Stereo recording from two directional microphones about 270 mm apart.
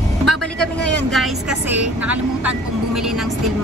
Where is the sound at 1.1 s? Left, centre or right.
Centre.